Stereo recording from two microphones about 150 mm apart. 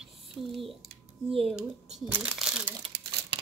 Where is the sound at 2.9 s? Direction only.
90° right.